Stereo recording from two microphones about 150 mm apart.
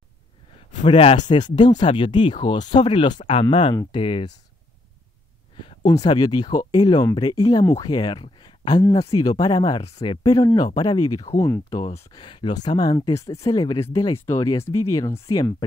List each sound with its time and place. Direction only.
0.8 s speech: 35° left (ahead or behind)
5.9 s speech: 25° left (ahead or behind)
12.1 s speech: 35° left (ahead or behind)